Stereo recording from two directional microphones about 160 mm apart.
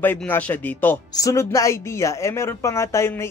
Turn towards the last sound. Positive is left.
turn(degrees=15)  # may be behind; listen again after turning